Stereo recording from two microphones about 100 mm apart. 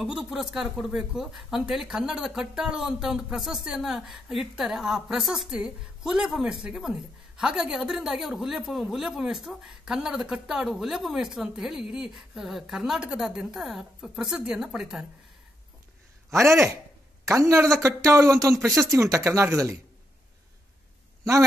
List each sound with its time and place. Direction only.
0.0 s speech: 5° right (ahead or behind)
16.3 s a woman's voice: 25° right (ahead or behind)